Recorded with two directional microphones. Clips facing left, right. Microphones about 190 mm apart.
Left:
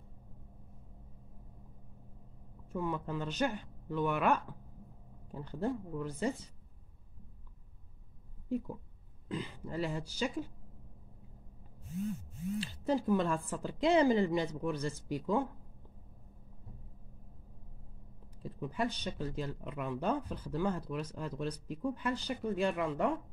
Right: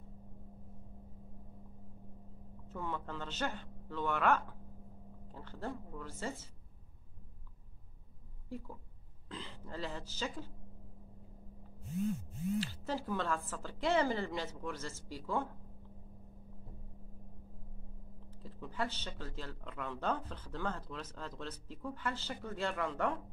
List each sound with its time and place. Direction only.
2.7 s speech: 10° left (ahead or behind)
8.5 s speech: 15° left (ahead or behind)
12.5 s speech: 15° left (ahead or behind)
18.4 s speech: 15° left (ahead or behind)